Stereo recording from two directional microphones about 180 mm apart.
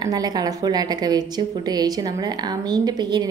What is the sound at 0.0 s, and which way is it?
A woman's voice, 20° right (ahead or behind).